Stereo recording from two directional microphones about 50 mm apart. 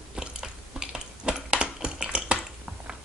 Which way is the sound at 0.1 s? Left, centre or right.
Centre.